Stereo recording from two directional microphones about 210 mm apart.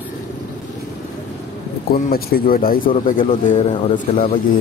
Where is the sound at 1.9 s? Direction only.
45° left (ahead or behind).